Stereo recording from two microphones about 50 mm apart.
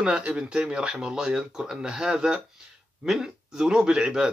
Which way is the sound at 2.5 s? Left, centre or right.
Centre.